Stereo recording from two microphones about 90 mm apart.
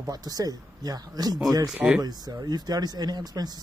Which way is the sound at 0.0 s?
45° right (ahead or behind).